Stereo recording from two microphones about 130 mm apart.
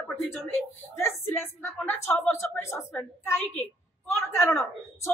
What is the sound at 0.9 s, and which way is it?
A woman's voice, 20° left (ahead or behind).